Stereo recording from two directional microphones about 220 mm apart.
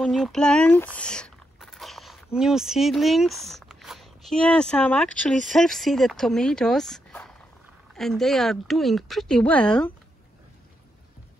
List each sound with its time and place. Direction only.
0.0 s speech: centre (ahead or behind)